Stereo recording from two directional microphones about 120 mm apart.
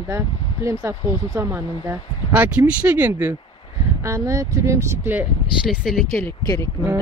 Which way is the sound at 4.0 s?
25° right (ahead or behind).